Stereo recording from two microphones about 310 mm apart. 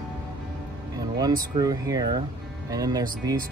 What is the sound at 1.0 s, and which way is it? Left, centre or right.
Speech, centre.